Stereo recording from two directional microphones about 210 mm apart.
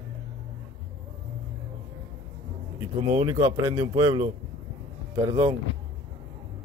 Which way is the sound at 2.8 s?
25° right (ahead or behind).